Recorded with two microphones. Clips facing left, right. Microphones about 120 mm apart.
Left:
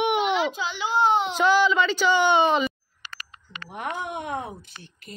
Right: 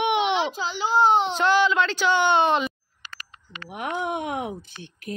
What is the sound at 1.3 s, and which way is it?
Speech, 5° left (ahead or behind).